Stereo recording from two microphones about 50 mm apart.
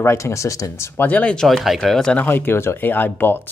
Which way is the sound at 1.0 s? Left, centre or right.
Left.